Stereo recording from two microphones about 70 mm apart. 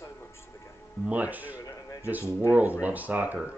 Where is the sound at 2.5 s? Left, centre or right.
Right.